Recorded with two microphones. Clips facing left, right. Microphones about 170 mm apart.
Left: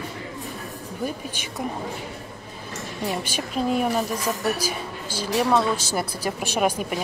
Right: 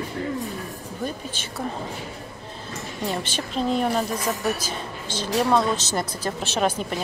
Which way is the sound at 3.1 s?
10° left (ahead or behind).